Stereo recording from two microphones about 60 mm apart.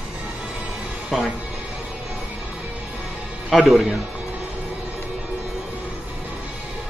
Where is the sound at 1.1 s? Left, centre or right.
Centre.